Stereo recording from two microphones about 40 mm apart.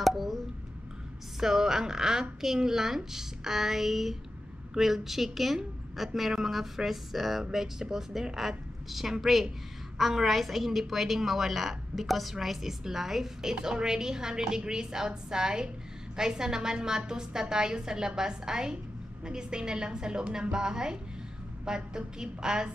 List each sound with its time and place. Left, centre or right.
0.0 s a child's voice: centre
1.4 s a woman's voice: centre